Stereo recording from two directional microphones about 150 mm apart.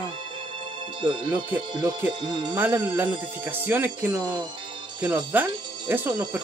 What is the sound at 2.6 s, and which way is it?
Speech, 10° right (ahead or behind).